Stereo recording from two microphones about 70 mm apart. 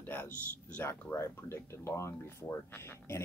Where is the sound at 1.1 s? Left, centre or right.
Left.